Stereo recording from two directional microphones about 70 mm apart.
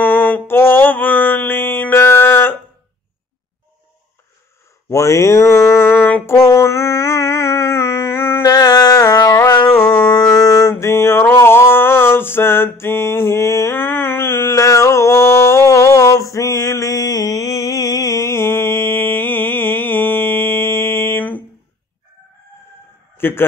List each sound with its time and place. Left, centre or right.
0.0 s mantra: left
4.8 s speech: left
6.2 s music: left
10.1 s a sound: left
13.7 s a sound: left
23.1 s chicken: left